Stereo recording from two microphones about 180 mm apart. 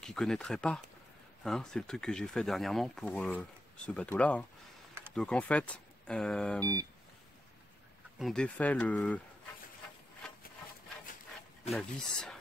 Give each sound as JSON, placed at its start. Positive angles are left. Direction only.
{"t": 0.0, "sound": "speech", "side_deg": 5}
{"t": 6.6, "sound": "speech", "side_deg": -20}
{"t": 8.2, "sound": "speech", "side_deg": 5}
{"t": 11.7, "sound": "speech", "side_deg": 5}